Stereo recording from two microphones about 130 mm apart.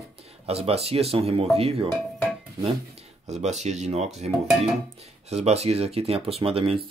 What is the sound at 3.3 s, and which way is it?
Speech, 60° right (ahead or behind).